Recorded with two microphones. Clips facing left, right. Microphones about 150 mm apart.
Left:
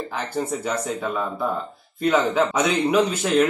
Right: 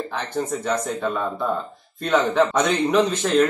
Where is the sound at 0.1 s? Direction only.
10° left (ahead or behind).